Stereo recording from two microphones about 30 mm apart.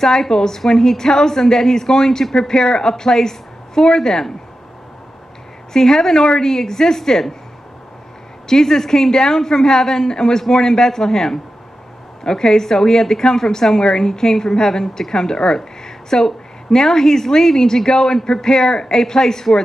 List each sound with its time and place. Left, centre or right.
0.0 s a woman's voice: centre
5.7 s a woman's voice: left
8.5 s a woman's voice: centre